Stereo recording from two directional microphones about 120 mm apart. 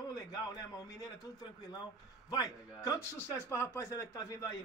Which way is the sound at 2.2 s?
30° left (ahead or behind).